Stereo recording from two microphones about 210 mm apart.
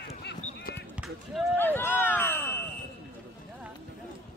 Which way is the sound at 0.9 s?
Centre (ahead or behind).